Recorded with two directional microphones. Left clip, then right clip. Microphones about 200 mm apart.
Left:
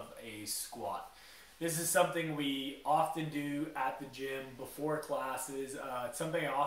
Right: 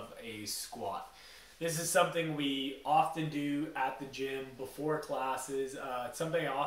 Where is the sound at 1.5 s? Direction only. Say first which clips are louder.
Right 1 dB; 15° right (ahead or behind).